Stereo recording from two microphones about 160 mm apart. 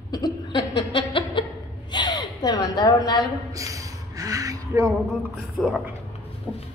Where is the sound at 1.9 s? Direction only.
25° left (ahead or behind).